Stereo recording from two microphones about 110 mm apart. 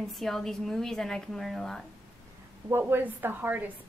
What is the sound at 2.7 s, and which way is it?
A woman's voice, 20° right (ahead or behind).